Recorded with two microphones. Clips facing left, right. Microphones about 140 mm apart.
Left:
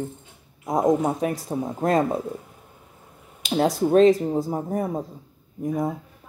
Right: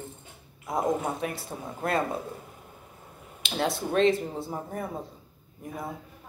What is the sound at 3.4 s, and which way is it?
Speech, 40° left (ahead or behind).